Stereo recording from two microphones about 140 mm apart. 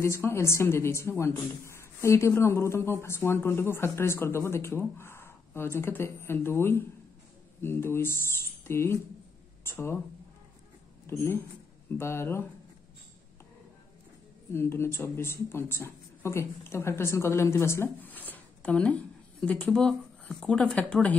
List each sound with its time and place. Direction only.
0.0 s a woman's voice: 20° left (ahead or behind)
12.0 s a woman's voice: 20° left (ahead or behind)
14.5 s a woman's voice: 15° left (ahead or behind)